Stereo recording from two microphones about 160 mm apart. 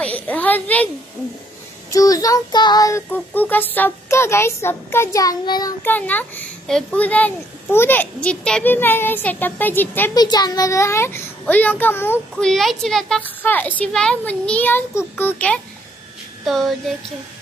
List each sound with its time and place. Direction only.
0.0 s a sound: 10° left (ahead or behind)
1.9 s child singing: 20° left (ahead or behind)
5.8 s speech: 10° left (ahead or behind)
10.1 s speech: 25° left (ahead or behind)
12.4 s speech: centre (ahead or behind)
16.4 s a sound: centre (ahead or behind)